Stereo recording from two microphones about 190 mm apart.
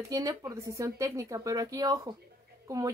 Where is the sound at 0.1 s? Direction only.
20° right (ahead or behind).